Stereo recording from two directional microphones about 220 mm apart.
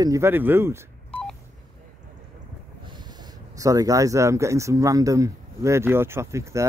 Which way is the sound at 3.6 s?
15° right (ahead or behind).